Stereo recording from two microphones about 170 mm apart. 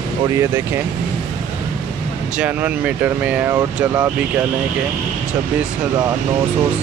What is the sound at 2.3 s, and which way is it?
Speech, 10° right (ahead or behind).